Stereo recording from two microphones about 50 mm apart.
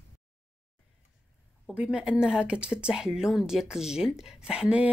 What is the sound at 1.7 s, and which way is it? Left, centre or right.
Speech, centre.